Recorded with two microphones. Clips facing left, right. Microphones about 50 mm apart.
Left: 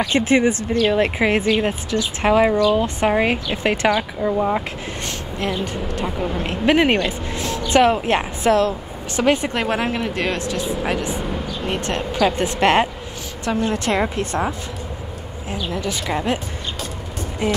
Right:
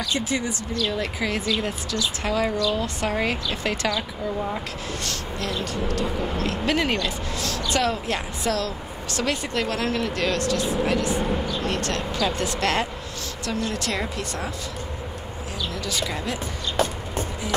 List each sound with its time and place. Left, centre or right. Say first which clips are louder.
0.0 s speech: left 9 dB; left
15.5 s speech: left 5 dB; left
17.4 s speech: left 6 dB; left